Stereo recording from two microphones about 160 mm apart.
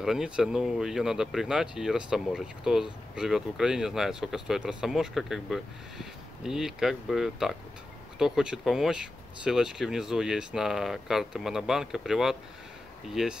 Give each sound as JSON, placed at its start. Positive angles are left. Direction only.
{"t": 0.0, "sound": "speech", "side_deg": -5}